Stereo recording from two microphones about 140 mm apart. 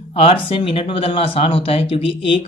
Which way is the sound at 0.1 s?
40° left (ahead or behind).